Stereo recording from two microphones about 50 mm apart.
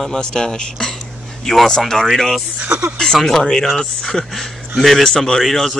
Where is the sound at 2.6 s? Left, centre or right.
Right.